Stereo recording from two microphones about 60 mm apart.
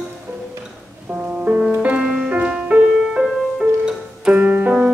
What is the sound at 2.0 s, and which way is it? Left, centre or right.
Music, centre.